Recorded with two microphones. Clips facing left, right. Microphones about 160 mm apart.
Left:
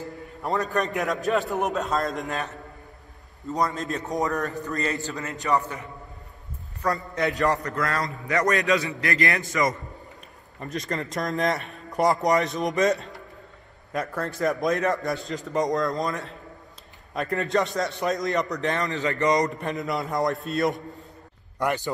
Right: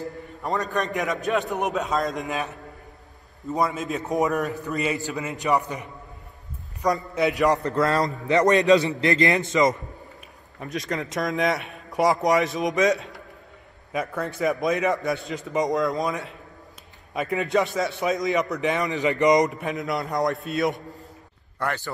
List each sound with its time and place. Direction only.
0.4 s speech: centre (ahead or behind)
3.5 s speech: 5° right (ahead or behind)
4.2 s a man's voice: 20° right (ahead or behind)
7.6 s a man's voice: 30° right (ahead or behind)
10.6 s speech: centre (ahead or behind)
18.8 s a man's voice: 15° right (ahead or behind)
19.6 s speech: centre (ahead or behind)
21.5 s speech: 15° left (ahead or behind)